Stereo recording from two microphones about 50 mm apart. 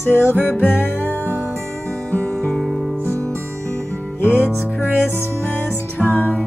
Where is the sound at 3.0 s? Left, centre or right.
Right.